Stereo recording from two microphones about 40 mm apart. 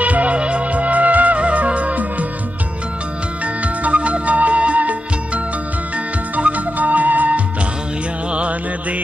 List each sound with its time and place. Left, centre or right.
0.0 s music: right
3.6 s music: right